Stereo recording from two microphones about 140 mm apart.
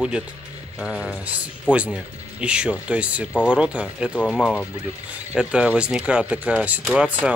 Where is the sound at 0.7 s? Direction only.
5° right (ahead or behind).